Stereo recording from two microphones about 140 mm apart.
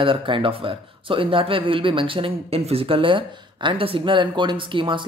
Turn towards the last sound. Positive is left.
turn(degrees=-35)  # may be behind; listen again after turning